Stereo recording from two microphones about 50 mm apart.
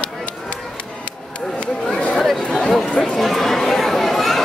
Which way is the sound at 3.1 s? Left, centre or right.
Centre.